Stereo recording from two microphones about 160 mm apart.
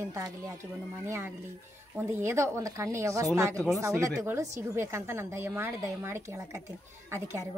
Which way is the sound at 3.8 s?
20° right (ahead or behind).